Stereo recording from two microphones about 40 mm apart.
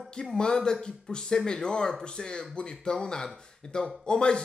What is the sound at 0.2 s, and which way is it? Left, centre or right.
A man's voice, centre.